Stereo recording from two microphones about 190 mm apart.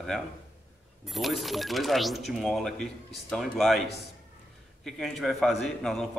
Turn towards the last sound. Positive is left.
turn(degrees=0)  # may be behind; listen again after turning